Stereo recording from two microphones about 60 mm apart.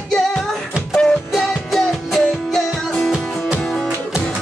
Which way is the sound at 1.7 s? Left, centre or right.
Centre.